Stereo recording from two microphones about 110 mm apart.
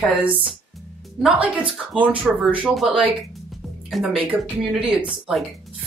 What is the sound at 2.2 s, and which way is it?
Speech, 10° right (ahead or behind).